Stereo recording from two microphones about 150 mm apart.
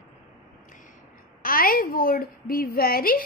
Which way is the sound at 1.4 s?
75° left (ahead or behind).